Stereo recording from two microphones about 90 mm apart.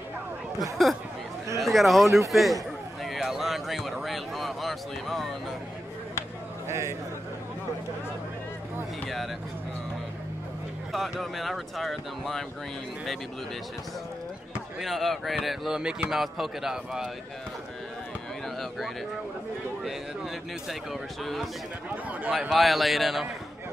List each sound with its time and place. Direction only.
0.8 s a man's voice: centre (ahead or behind)
6.7 s a man's voice: 35° right (ahead or behind)
10.9 s speech: centre (ahead or behind)
14.5 s speech: centre (ahead or behind)
20.6 s speech: centre (ahead or behind)